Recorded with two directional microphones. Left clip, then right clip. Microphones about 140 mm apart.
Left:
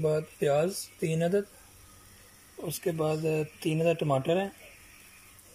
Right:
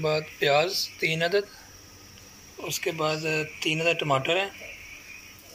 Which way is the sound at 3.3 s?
60° left (ahead or behind).